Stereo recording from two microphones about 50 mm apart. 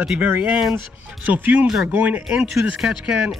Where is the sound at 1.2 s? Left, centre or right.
Right.